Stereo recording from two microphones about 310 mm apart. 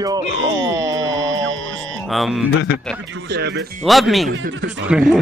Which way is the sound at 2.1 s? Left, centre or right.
Centre.